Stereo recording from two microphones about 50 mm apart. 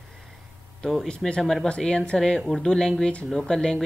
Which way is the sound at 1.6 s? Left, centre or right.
Centre.